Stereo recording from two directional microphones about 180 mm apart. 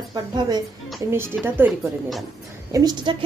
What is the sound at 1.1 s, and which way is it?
Speech, 10° right (ahead or behind).